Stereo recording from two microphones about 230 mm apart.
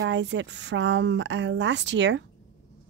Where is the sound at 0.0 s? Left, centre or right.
Right.